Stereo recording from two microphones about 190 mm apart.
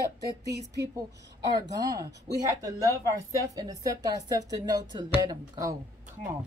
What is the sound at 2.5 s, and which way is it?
Speech, 15° right (ahead or behind).